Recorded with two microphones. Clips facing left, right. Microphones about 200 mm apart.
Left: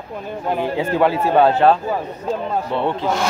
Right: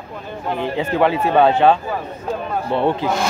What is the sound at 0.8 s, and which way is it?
Speech, 5° left (ahead or behind).